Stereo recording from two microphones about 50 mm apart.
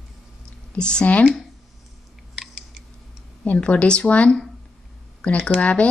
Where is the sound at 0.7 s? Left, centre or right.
Centre.